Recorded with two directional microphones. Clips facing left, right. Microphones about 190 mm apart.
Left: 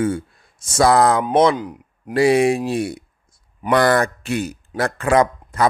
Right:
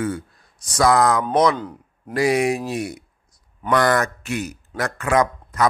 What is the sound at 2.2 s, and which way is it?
Speech, 30° left (ahead or behind).